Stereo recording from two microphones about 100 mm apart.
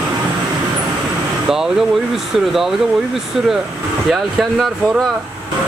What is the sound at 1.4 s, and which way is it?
Speech, 5° right (ahead or behind).